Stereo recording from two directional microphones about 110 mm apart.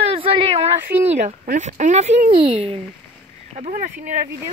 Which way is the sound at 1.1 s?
90° right.